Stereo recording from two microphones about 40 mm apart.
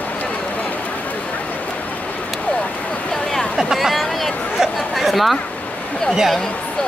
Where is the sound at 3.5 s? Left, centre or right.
Centre.